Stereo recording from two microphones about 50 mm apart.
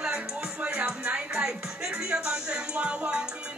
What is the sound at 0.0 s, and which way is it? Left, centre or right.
Music, right.